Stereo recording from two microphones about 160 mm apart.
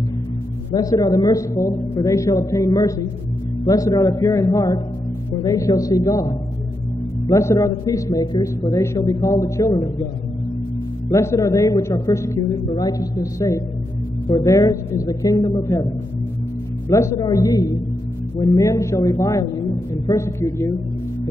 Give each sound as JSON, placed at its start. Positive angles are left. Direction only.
{"t": 0.7, "sound": "a man's voice", "side_deg": 20}
{"t": 11.1, "sound": "a man's voice", "side_deg": 20}
{"t": 16.9, "sound": "a man's voice", "side_deg": 20}